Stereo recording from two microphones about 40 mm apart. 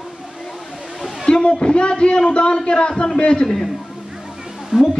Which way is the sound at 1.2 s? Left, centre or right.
Left.